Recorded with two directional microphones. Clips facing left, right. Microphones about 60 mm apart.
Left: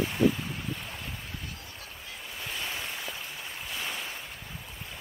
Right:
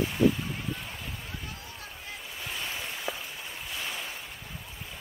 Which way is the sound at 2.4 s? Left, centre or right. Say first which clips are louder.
Left 1 dB; centre.